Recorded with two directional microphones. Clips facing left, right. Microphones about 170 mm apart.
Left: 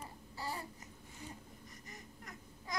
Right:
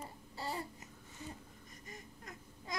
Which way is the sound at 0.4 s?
25° right (ahead or behind).